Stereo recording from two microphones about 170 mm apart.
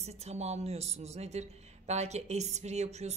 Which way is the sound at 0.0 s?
40° right (ahead or behind).